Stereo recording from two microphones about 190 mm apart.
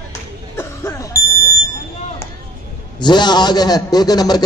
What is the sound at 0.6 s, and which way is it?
Music, 15° left (ahead or behind).